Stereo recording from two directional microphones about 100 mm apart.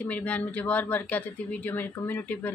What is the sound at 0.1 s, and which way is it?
Speech, 15° left (ahead or behind).